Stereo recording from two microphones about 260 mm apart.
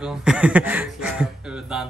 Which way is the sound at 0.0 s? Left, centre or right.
Centre.